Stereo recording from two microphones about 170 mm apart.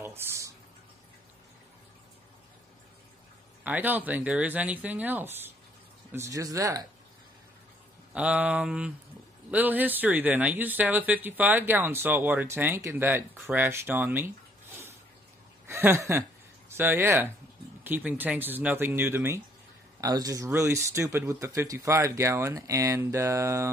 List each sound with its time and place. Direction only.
0.0 s a sound: 15° right (ahead or behind)
3.6 s speech: 10° right (ahead or behind)
8.1 s speech: 5° right (ahead or behind)
15.6 s speech: 15° right (ahead or behind)